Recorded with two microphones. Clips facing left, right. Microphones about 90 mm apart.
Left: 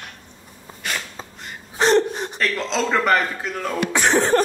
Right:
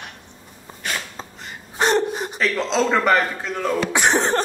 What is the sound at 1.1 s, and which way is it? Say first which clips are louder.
Gasp: right 1 dB; centre (ahead or behind).